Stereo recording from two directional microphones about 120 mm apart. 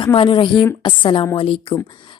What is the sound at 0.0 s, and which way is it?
Speech, 45° left (ahead or behind).